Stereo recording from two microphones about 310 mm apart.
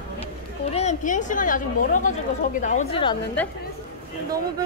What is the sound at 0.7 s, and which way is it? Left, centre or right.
A woman's voice, left.